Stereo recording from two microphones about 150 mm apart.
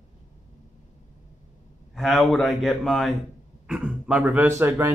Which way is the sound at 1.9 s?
Centre (ahead or behind).